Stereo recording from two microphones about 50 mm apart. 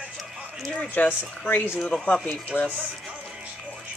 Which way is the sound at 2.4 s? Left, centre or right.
Left.